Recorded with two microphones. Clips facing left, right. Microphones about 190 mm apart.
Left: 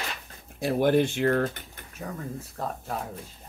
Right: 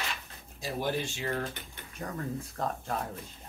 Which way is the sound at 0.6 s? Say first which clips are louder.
Left 10 dB; 60° left (ahead or behind).